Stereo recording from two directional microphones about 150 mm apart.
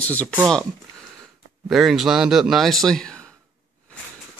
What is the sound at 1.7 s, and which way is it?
A man's voice, centre (ahead or behind).